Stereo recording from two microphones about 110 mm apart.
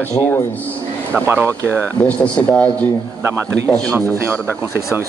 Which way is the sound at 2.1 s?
10° left (ahead or behind).